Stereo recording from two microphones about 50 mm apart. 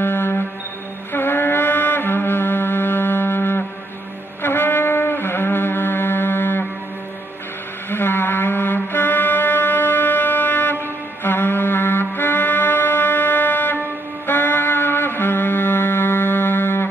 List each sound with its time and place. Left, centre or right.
0.0 s music: left
7.9 s music: left